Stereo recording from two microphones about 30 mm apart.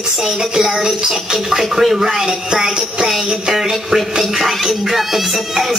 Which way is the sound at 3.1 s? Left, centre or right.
Centre.